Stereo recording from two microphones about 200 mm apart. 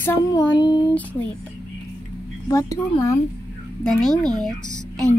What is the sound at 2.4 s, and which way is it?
Speech, 15° left (ahead or behind).